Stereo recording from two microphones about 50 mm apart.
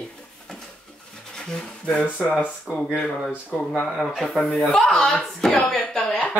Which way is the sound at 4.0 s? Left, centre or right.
Centre.